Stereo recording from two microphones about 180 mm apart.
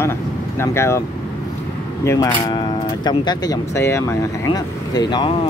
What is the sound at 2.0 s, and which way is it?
Speech, 20° left (ahead or behind).